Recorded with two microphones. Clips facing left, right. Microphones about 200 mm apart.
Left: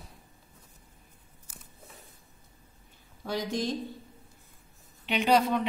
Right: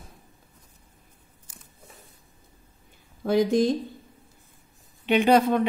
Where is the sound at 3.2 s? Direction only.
50° right (ahead or behind).